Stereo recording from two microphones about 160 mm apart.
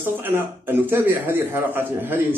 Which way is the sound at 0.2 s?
15° right (ahead or behind).